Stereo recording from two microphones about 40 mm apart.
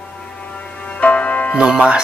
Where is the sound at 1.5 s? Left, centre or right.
Right.